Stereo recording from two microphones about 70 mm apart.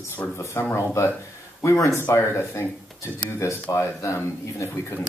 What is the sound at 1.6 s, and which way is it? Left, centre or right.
Speech, left.